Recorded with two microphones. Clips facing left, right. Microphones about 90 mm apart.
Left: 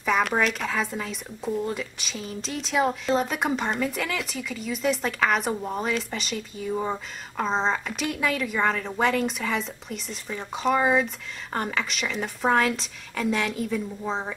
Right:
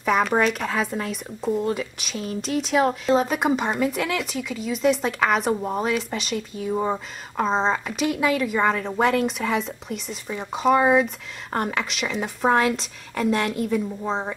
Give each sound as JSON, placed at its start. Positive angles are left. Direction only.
{"t": 0.0, "sound": "speech", "side_deg": -5}